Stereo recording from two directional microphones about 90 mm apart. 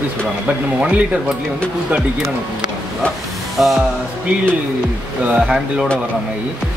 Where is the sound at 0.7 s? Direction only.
15° right (ahead or behind).